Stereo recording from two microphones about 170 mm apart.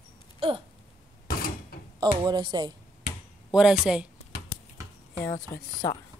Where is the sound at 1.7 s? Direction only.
60° left (ahead or behind).